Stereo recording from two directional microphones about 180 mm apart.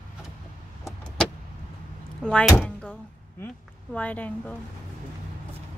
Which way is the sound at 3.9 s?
10° left (ahead or behind).